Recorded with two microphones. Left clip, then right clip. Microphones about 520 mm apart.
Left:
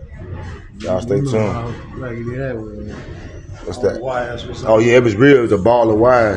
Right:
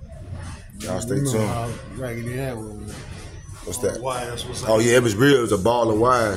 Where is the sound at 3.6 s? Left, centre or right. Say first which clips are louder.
Left 7 dB; right.